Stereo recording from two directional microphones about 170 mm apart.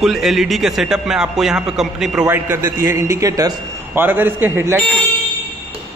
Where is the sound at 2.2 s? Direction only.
15° right (ahead or behind).